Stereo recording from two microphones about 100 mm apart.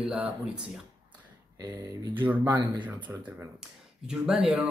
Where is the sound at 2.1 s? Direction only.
20° right (ahead or behind).